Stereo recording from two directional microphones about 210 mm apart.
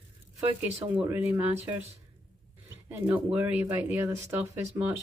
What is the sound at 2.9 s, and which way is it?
Speech, 10° right (ahead or behind).